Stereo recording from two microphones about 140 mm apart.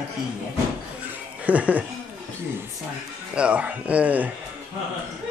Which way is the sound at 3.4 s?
10° right (ahead or behind).